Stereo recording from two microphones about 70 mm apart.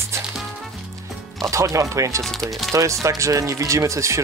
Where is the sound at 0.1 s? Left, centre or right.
Right.